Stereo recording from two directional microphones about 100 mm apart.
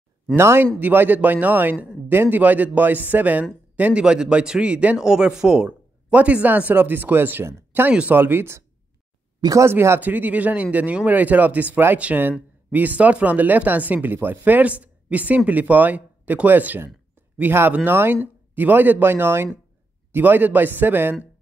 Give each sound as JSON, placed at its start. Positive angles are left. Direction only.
{"t": 0.4, "sound": "a man's voice", "side_deg": -25}
{"t": 9.4, "sound": "speech", "side_deg": -35}
{"t": 9.7, "sound": "a man's voice", "side_deg": -25}